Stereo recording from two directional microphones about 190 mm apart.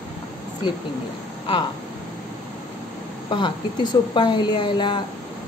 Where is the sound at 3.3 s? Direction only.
25° left (ahead or behind).